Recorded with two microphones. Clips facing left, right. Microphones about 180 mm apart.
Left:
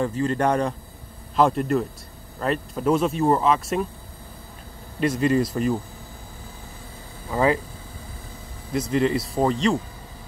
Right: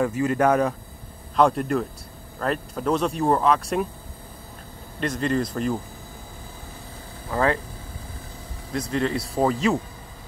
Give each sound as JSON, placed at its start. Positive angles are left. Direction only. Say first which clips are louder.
{"t": 0.0, "sound": "a man's voice", "louder": "right 1 dB", "side_deg": -10}
{"t": 5.0, "sound": "speech", "louder": "left 4 dB", "side_deg": 5}
{"t": 7.2, "sound": "speech", "louder": "left 2 dB", "side_deg": 5}
{"t": 8.7, "sound": "speech", "louder": "left 3 dB", "side_deg": 5}